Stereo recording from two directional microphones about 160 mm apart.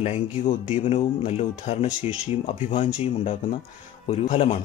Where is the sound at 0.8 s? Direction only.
40° left (ahead or behind).